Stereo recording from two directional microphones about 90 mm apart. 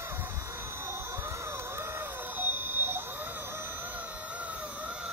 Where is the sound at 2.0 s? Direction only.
25° right (ahead or behind).